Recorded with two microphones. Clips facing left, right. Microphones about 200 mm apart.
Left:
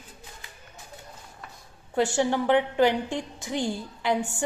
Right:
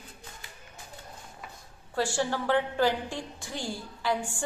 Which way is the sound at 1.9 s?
20° left (ahead or behind).